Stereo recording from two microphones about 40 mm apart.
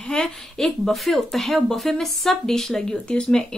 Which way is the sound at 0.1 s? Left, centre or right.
Centre.